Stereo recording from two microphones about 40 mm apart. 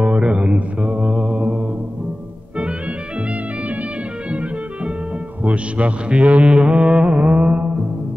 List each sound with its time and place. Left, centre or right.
0.0 s mantra: right
4.3 s music: right
5.4 s a man's voice: right